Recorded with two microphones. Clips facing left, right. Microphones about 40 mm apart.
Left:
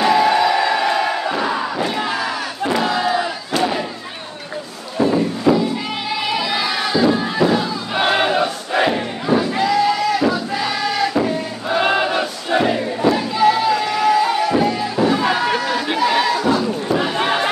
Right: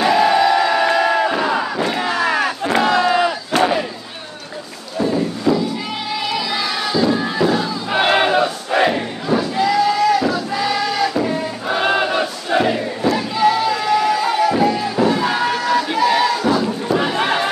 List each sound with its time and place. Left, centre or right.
0.0 s crowd: centre
2.2 s crowd: right
2.7 s battle cry: right
4.9 s a sound: centre
6.2 s crowd: centre
7.9 s crowd: centre
11.2 s music: centre
16.4 s a sound: centre